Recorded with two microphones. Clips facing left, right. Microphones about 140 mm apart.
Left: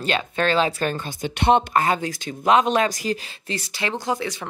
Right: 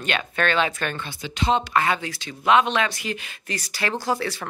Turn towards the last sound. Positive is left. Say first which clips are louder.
# even
turn(degrees=20)  # may be behind; listen again after turning